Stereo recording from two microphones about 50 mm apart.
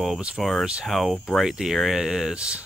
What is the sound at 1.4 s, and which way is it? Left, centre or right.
Speech, centre.